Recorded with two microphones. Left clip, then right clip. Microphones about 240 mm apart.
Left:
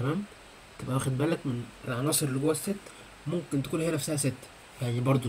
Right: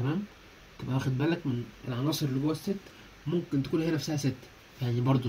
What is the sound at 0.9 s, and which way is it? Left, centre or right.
A man's voice, left.